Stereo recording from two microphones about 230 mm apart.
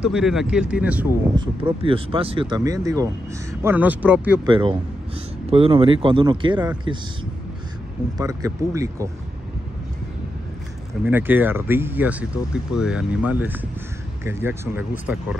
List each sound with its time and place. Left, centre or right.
0.0 s speech: centre
1.3 s speech: right
4.5 s speech: right
8.2 s speech: centre
11.1 s speech: centre